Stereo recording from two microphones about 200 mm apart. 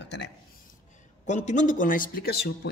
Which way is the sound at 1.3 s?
35° left (ahead or behind).